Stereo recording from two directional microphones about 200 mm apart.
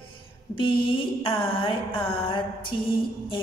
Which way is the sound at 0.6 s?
25° left (ahead or behind).